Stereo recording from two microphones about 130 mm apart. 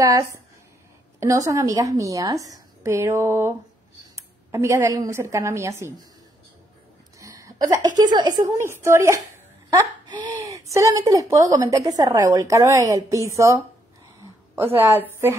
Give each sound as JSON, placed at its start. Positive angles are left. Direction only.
{"t": 0.0, "sound": "a woman's voice", "side_deg": -25}
{"t": 7.2, "sound": "a sound", "side_deg": -25}
{"t": 8.0, "sound": "a woman's voice", "side_deg": -30}
{"t": 14.8, "sound": "a woman's voice", "side_deg": -15}